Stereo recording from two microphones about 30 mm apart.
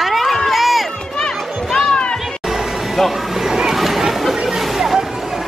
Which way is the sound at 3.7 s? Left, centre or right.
Centre.